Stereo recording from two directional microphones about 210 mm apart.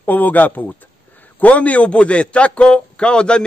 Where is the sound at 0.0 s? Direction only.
10° left (ahead or behind).